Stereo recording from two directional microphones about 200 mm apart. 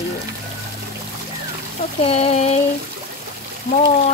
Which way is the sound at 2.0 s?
30° left (ahead or behind).